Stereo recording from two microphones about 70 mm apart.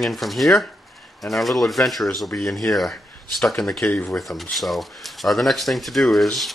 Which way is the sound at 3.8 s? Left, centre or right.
Left.